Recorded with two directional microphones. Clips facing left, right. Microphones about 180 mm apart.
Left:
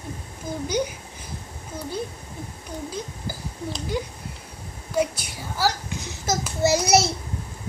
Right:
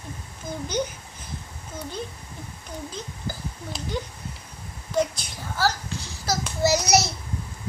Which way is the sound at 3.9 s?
10° left (ahead or behind).